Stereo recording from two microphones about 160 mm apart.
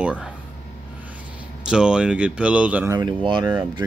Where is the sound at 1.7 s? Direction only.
5° right (ahead or behind).